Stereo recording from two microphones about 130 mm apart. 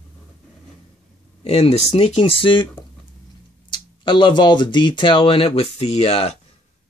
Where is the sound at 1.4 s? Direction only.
50° left (ahead or behind).